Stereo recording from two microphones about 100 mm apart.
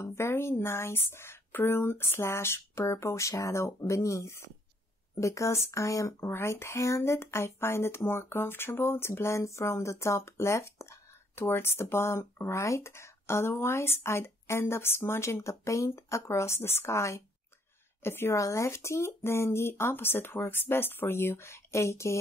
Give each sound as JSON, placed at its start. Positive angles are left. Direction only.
{"t": 0.0, "sound": "speech", "side_deg": 25}